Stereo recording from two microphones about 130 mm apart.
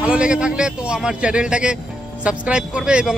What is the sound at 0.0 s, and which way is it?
A man's voice, 10° right (ahead or behind).